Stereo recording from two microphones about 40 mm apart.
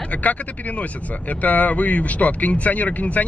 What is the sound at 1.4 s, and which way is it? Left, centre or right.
Speech, left.